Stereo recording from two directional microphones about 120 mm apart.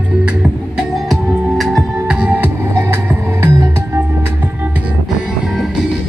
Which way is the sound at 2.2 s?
10° right (ahead or behind).